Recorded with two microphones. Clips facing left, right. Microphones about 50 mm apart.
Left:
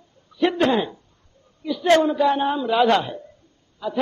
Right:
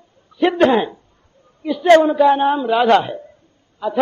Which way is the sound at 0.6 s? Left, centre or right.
Right.